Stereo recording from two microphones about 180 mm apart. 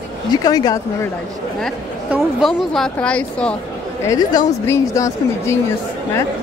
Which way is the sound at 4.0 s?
20° left (ahead or behind).